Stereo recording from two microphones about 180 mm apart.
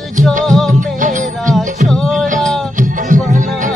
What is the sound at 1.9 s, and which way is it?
Music, centre (ahead or behind).